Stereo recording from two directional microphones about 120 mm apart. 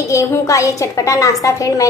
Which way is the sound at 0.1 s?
25° left (ahead or behind).